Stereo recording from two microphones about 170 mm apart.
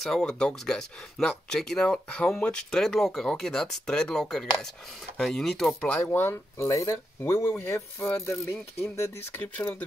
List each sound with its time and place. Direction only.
0.0 s speech: 5° left (ahead or behind)